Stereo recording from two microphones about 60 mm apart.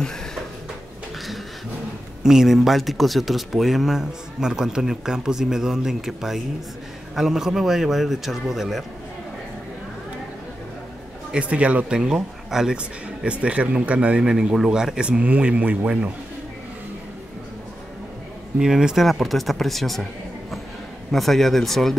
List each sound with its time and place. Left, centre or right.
2.2 s speech: centre
11.3 s speech: right
12.0 s speech: centre
12.7 s speech: centre
14.3 s speech: centre
18.6 s speech: centre
19.0 s speech: centre
21.1 s speech: centre